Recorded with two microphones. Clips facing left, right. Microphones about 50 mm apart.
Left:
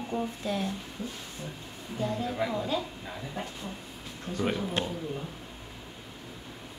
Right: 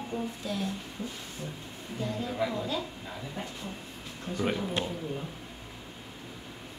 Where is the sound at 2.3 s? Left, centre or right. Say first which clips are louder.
Left 1 dB; centre.